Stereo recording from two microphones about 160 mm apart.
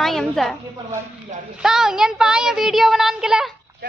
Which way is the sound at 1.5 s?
5° right (ahead or behind).